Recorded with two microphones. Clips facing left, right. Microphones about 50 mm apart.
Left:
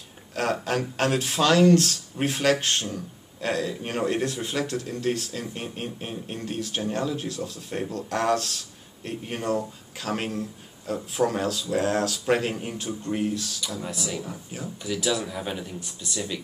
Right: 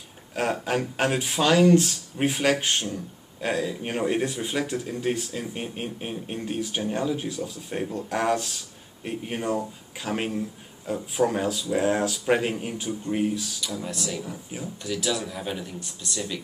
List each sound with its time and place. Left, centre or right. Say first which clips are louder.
0.3 s speech: even; centre
13.7 s speech: right 1 dB; centre